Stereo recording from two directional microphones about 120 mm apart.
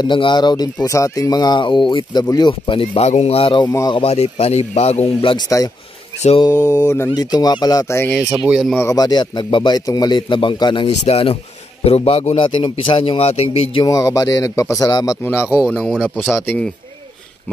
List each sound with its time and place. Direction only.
0.0 s speech: 40° left (ahead or behind)
0.8 s speech: 25° left (ahead or behind); by 3.7 s 45° left (ahead or behind)
3.9 s speech: 55° left (ahead or behind)
5.0 s speech: 45° left (ahead or behind)
6.4 s speech: 30° left (ahead or behind)
8.2 s speech: 15° right (ahead or behind)
8.9 s speech: 35° left (ahead or behind)
11.1 s speech: 55° left (ahead or behind)
12.4 s speech: 45° left (ahead or behind)
13.8 s speech: 30° left (ahead or behind)
15.7 s speech: 10° left (ahead or behind)